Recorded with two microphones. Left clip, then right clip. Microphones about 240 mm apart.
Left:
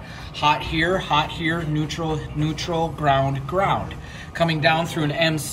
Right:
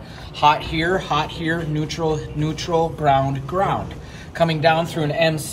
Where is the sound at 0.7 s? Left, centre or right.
Centre.